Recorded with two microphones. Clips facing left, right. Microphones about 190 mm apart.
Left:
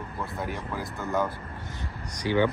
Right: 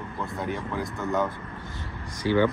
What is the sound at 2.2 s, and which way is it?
Speech, 15° left (ahead or behind).